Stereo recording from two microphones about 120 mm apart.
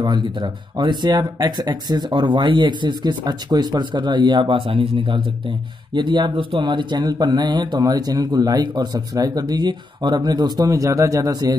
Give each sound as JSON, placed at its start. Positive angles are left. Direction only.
{"t": 0.0, "sound": "speech", "side_deg": -40}